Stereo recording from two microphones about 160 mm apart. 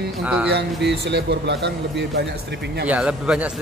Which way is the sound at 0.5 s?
90° right.